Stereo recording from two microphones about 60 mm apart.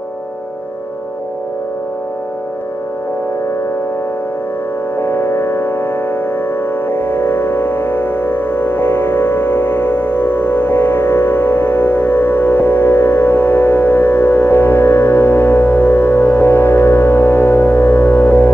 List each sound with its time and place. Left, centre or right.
4.9 s music: left